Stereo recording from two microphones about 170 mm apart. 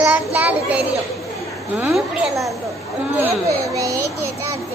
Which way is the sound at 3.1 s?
20° right (ahead or behind).